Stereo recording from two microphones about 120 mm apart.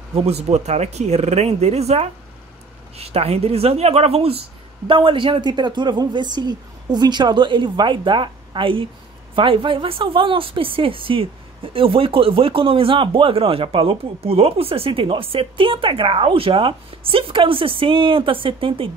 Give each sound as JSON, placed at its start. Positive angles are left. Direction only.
{"t": 0.1, "sound": "speech", "side_deg": -60}
{"t": 4.8, "sound": "a woman's voice", "side_deg": -45}